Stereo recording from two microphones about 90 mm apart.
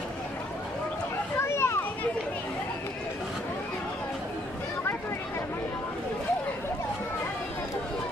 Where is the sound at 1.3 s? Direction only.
30° left (ahead or behind).